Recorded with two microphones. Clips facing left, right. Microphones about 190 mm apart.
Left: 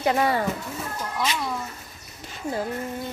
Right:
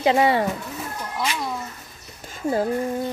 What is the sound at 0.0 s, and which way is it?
Speech, 25° right (ahead or behind).